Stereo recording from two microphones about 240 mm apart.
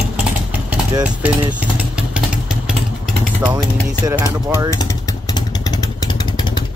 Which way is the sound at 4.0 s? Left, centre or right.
Centre.